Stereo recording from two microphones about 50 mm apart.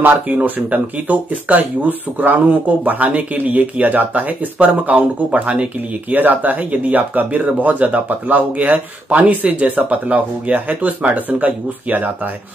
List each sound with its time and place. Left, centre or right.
0.7 s speech: right